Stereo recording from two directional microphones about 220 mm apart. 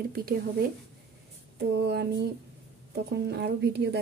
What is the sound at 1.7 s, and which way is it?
Speech, 50° right (ahead or behind).